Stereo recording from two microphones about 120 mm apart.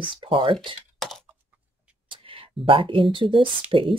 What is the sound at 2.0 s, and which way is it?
Speech, 50° right (ahead or behind).